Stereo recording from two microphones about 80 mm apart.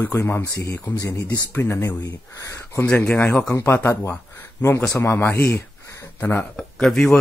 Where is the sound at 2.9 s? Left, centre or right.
Left.